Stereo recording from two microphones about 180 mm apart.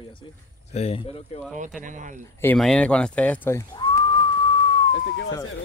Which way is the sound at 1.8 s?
45° right (ahead or behind).